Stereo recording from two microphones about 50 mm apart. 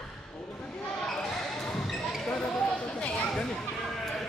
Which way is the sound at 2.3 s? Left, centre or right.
Centre.